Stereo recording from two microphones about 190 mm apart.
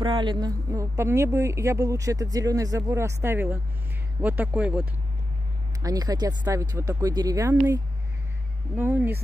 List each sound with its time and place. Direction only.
0.0 s a woman's voice: 25° right (ahead or behind); by 4.8 s 5° right (ahead or behind)
5.8 s speech: 20° right (ahead or behind)
8.7 s a woman's voice: 10° right (ahead or behind)